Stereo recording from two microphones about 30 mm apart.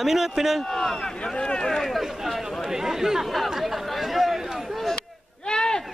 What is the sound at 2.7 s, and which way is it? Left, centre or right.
Speech, centre.